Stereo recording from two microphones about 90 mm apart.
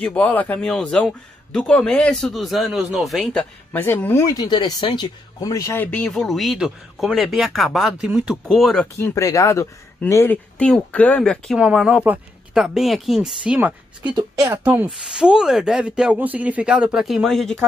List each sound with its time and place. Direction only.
0.0 s speech: 15° left (ahead or behind)
0.7 s speech: 5° left (ahead or behind)
3.7 s speech: 20° left (ahead or behind)
4.3 s speech: 50° left (ahead or behind)
5.5 s speech: 35° left (ahead or behind)
5.9 s speech: 15° left (ahead or behind)
6.1 s speech: centre (ahead or behind)
9.0 s speech: 35° left (ahead or behind)
10.3 s speech: 15° left (ahead or behind)
11.5 s speech: 5° right (ahead or behind)
14.0 s speech: 55° right (ahead or behind)
14.5 s speech: 25° right (ahead or behind)
14.9 s speech: 10° right (ahead or behind)